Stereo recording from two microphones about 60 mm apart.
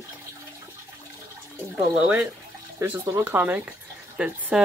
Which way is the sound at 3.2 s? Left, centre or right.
Right.